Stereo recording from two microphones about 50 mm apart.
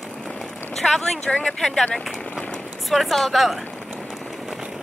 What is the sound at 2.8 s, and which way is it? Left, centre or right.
Speech, centre.